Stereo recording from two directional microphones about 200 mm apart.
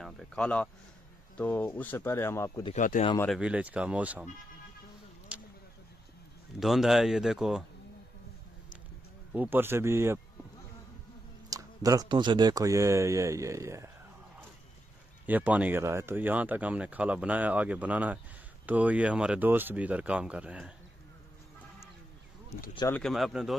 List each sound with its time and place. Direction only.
0.0 s speech: 5° left (ahead or behind)
2.6 s speech: 40° left (ahead or behind)
3.3 s speech: 5° right (ahead or behind)
6.6 s speech: centre (ahead or behind)
9.3 s speech: 10° right (ahead or behind)
11.5 s speech: 15° right (ahead or behind)
15.2 s speech: 10° right (ahead or behind)
22.8 s speech: 15° left (ahead or behind)
23.0 s speech: centre (ahead or behind)